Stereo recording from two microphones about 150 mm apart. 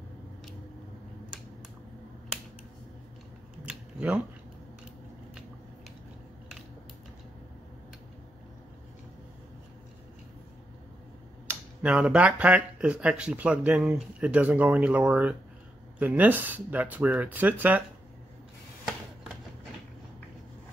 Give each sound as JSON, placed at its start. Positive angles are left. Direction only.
{"t": 3.6, "sound": "scissors", "side_deg": -10}
{"t": 11.4, "sound": "speech", "side_deg": -10}